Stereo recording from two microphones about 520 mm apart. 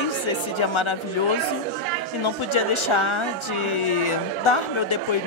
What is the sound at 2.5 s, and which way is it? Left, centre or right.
A woman's voice, left.